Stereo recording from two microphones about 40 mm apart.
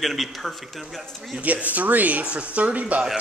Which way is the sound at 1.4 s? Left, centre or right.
Right.